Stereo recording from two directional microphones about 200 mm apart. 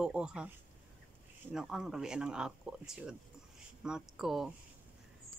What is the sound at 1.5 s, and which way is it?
Speech, centre (ahead or behind).